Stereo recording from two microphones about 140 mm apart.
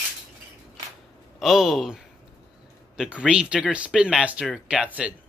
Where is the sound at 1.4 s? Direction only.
Centre (ahead or behind).